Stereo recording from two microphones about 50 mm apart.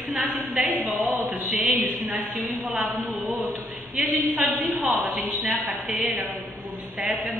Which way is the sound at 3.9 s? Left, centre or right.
Right.